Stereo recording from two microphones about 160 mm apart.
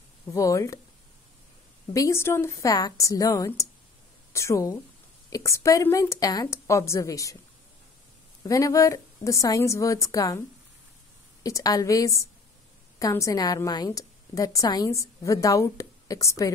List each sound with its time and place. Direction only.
0.3 s a woman's voice: 20° left (ahead or behind)
2.0 s a woman's voice: 15° left (ahead or behind)
8.5 s a woman's voice: 20° left (ahead or behind)
11.4 s a woman's voice: 20° left (ahead or behind)